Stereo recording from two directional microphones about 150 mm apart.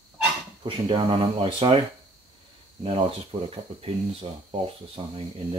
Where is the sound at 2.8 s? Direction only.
40° right (ahead or behind).